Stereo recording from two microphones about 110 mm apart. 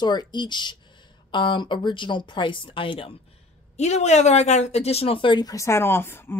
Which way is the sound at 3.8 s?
90° left.